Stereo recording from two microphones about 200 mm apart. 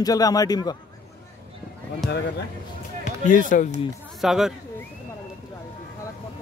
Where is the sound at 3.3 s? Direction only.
40° left (ahead or behind).